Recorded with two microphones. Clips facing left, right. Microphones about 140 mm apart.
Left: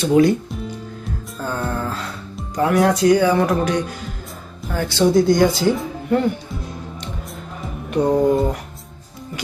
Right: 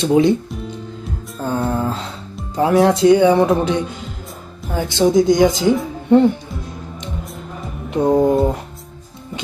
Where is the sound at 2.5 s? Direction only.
25° right (ahead or behind).